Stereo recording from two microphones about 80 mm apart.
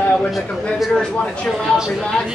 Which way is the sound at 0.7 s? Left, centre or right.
Centre.